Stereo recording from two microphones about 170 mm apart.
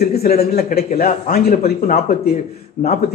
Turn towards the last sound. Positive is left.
turn(degrees=60)  # may be behind; listen again after turning